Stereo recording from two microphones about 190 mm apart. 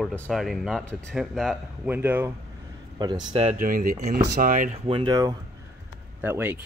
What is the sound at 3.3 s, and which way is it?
Speech, 30° right (ahead or behind).